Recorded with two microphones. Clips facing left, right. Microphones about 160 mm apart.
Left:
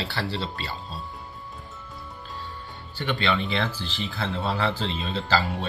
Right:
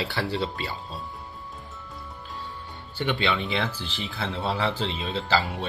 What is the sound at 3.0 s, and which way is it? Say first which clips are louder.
Speech: even; 20° right (ahead or behind).